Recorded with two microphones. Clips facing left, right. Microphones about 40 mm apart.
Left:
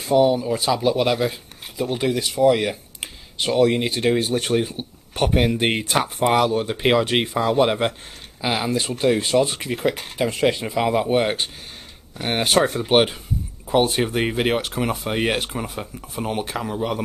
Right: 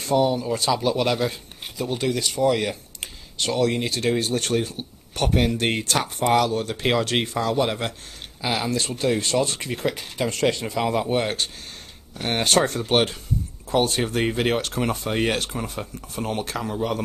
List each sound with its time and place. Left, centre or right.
0.0 s speech: centre